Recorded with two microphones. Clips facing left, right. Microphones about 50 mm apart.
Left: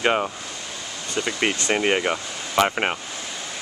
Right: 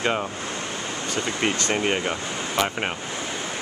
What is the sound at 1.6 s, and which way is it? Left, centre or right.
Speech, centre.